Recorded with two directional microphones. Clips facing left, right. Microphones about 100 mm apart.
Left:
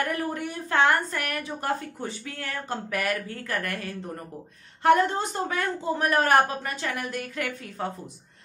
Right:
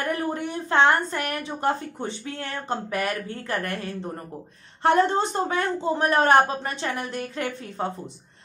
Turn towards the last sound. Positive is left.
turn(degrees=-25)  # may be behind; listen again after turning